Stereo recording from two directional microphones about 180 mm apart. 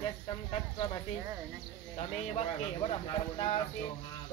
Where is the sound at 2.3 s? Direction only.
35° left (ahead or behind).